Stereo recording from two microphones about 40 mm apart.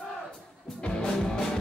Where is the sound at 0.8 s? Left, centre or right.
Left.